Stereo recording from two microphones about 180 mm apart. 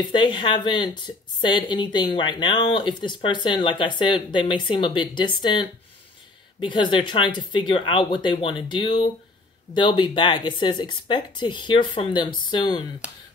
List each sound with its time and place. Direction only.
0.0 s a woman's voice: 25° left (ahead or behind)